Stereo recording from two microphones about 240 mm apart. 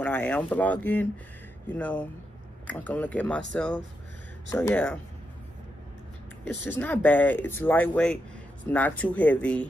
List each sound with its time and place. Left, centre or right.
0.0 s speech: centre
6.7 s speech: centre